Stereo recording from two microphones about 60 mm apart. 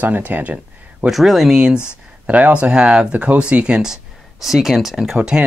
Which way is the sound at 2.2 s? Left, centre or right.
Right.